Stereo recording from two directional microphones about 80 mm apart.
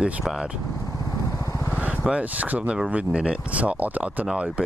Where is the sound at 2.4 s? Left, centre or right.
Right.